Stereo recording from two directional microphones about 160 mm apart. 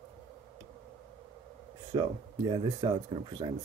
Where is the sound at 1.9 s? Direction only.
30° right (ahead or behind).